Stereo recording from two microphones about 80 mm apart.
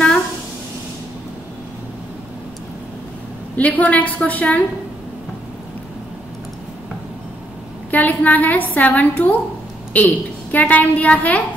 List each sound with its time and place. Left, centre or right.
3.5 s a woman's voice: centre
7.9 s a woman's voice: left